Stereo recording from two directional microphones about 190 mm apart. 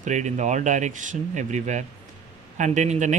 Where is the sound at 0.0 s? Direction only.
40° right (ahead or behind).